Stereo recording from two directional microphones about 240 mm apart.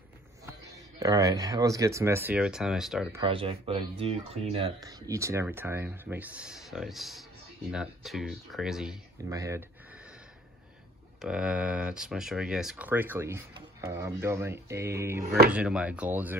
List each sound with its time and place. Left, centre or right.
0.5 s speech: centre
3.2 s speech: right; by 9.0 s centre
9.3 s a sound: centre
11.1 s speech: centre